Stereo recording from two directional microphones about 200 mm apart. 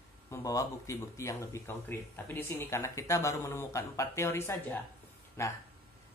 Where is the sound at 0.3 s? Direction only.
15° left (ahead or behind).